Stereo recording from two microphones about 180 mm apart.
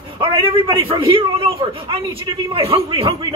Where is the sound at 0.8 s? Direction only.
30° right (ahead or behind).